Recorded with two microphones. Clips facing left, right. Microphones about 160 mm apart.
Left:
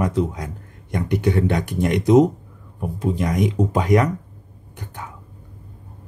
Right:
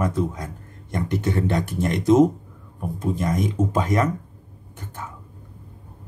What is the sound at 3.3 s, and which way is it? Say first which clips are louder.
Speech: left 2 dB; 15° left (ahead or behind).